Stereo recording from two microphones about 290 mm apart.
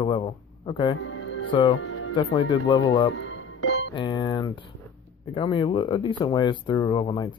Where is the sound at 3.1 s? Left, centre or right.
Left.